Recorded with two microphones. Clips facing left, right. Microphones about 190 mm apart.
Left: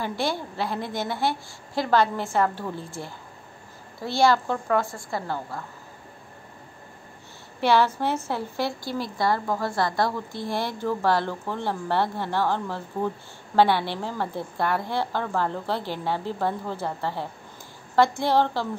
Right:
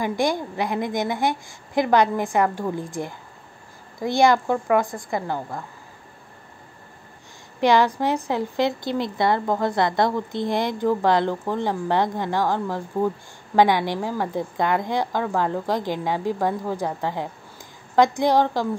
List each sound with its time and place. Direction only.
0.0 s a woman's voice: 15° right (ahead or behind)
7.6 s a woman's voice: 15° right (ahead or behind)